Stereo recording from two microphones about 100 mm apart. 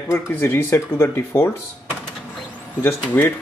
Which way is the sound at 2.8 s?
20° left (ahead or behind).